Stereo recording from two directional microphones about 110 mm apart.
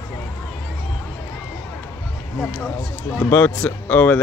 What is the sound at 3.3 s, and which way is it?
Speech, 15° left (ahead or behind).